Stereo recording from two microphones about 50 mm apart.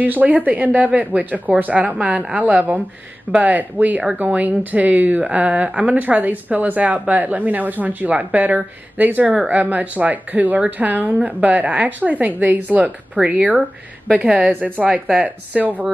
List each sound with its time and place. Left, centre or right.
0.0 s speech: right
13.1 s speech: right